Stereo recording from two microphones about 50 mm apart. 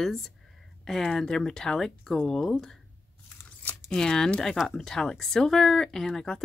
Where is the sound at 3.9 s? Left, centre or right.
Centre.